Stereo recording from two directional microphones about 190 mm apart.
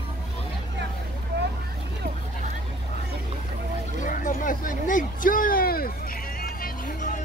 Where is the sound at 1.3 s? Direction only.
65° right (ahead or behind).